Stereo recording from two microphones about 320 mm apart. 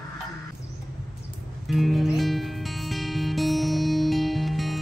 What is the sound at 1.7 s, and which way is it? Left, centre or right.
Music, centre.